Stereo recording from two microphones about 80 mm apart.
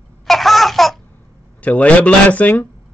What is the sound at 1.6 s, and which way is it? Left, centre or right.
A man's voice, centre.